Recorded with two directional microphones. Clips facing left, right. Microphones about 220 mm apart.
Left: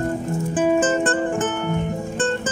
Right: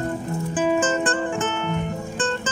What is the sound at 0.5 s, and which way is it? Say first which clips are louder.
Music: left 3 dB; 45° left (ahead or behind).